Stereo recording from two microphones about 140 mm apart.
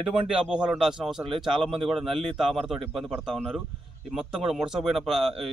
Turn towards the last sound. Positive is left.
turn(degrees=0)  # may be behind; listen again after turning